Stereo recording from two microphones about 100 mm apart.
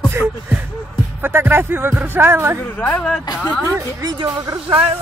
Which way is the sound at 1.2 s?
20° right (ahead or behind).